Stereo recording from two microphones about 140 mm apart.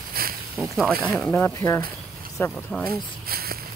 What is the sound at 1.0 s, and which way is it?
Speech, 10° left (ahead or behind).